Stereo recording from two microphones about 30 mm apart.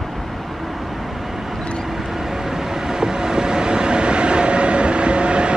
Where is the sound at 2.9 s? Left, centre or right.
Right.